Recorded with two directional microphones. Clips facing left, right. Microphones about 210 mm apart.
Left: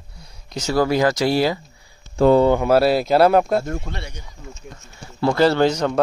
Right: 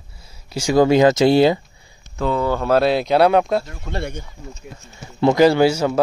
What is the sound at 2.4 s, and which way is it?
Speech, 10° left (ahead or behind).